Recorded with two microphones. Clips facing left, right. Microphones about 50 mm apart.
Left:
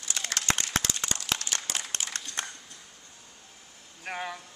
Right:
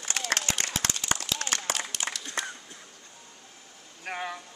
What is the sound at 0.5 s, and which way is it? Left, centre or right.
Applause, left.